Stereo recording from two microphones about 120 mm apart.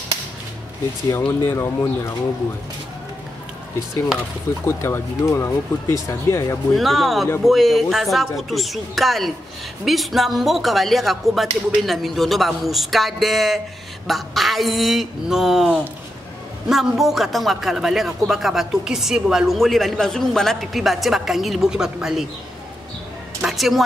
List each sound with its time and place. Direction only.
1.1 s speech: 20° left (ahead or behind)
4.6 s speech: 20° left (ahead or behind)
6.7 s a man's voice: centre (ahead or behind)
23.4 s music: centre (ahead or behind)